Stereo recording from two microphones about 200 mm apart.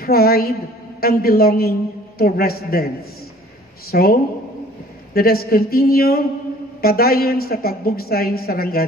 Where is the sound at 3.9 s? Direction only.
50° left (ahead or behind).